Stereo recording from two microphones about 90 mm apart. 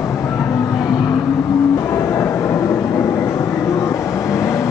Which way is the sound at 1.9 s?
30° left (ahead or behind).